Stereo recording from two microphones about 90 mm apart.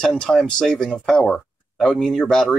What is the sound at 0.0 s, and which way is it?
Speech, 10° left (ahead or behind).